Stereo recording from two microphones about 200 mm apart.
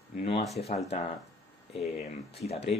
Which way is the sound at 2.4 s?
30° left (ahead or behind).